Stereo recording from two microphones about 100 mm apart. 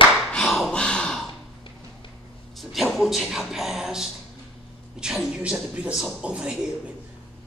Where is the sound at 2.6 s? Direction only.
Centre (ahead or behind).